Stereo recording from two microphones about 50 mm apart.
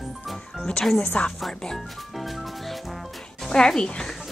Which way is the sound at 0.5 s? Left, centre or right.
Centre.